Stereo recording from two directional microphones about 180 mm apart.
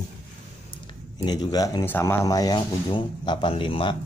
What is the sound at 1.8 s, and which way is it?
Speech, 10° left (ahead or behind).